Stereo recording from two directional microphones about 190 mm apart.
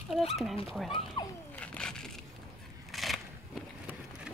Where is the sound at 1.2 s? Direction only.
20° left (ahead or behind).